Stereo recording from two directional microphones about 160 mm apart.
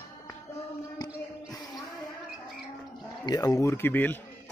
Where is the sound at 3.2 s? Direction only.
25° left (ahead or behind).